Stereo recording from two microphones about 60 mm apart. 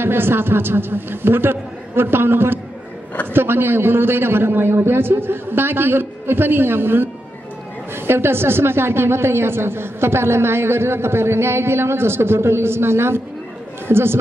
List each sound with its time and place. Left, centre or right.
0.0 s a man's voice: right